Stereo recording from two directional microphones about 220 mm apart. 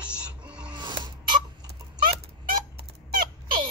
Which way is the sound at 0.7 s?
20° right (ahead or behind).